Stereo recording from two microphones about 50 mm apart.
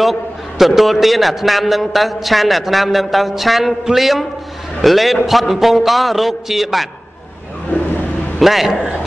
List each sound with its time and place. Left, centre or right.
0.0 s a man's voice: centre
8.4 s a man's voice: centre